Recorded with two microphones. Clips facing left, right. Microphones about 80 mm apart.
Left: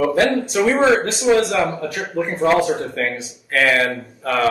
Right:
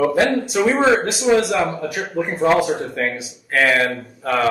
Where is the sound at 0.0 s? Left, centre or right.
Centre.